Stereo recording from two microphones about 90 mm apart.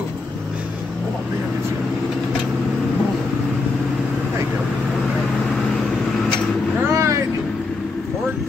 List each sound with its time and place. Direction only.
6.9 s vehicle: 35° right (ahead or behind)